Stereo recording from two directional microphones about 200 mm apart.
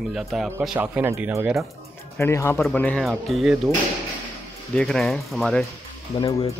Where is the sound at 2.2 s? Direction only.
15° left (ahead or behind).